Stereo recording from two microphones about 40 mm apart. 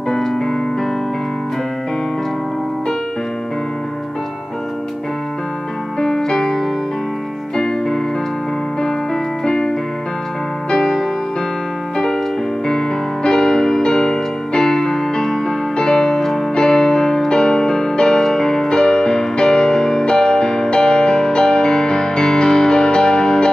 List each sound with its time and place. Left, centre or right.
0.1 s music: centre
5.9 s music: centre
7.5 s keyboard: centre
9.4 s keyboard: centre
10.7 s music: centre
12.6 s music: centre